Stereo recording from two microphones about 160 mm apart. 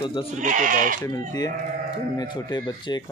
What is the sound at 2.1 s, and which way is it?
Speech, 25° left (ahead or behind).